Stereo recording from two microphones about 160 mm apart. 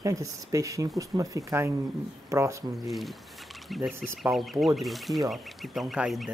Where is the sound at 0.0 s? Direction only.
20° right (ahead or behind).